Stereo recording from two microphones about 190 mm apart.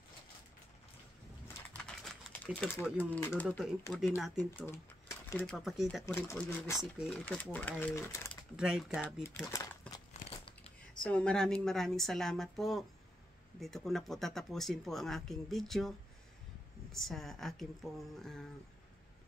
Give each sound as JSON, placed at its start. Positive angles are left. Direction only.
{"t": 1.8, "sound": "typing", "side_deg": 5}
{"t": 3.0, "sound": "speech", "side_deg": 10}
{"t": 3.9, "sound": "speech", "side_deg": 0}
{"t": 4.4, "sound": "speech", "side_deg": 10}
{"t": 5.6, "sound": "speech", "side_deg": 0}
{"t": 6.0, "sound": "speech", "side_deg": 15}
{"t": 6.8, "sound": "speech", "side_deg": 0}
{"t": 8.5, "sound": "speech", "side_deg": -5}
{"t": 9.5, "sound": "crumpling", "side_deg": 20}
{"t": 11.1, "sound": "speech", "side_deg": 5}
{"t": 16.9, "sound": "speech", "side_deg": 0}